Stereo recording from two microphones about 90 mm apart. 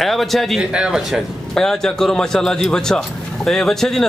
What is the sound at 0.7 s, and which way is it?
Speech, 10° right (ahead or behind).